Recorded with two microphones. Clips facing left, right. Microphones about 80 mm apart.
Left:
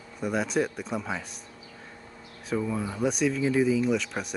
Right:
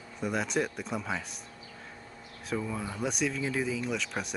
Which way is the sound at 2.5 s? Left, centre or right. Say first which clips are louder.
Left 5 dB; centre.